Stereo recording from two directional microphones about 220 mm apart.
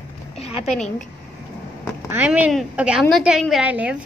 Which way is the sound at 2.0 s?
5° right (ahead or behind).